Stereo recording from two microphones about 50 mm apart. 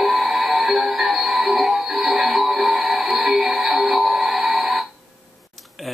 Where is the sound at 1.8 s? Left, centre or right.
Centre.